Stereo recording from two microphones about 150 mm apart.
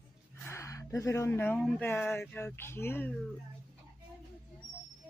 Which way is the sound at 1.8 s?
10° left (ahead or behind).